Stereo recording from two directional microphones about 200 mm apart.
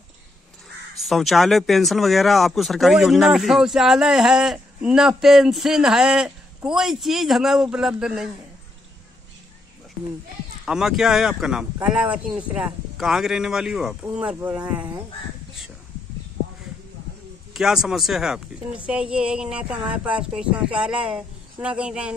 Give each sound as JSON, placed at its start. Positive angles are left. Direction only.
{"t": 1.0, "sound": "speech", "side_deg": 0}
{"t": 10.6, "sound": "speech", "side_deg": 0}
{"t": 17.6, "sound": "speech", "side_deg": 0}